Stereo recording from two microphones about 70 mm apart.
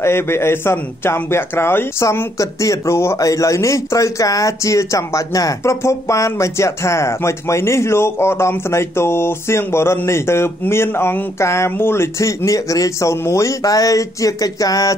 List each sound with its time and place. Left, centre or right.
0.0 s speech: left
2.3 s speech: left
3.2 s speech: left
5.6 s speech: left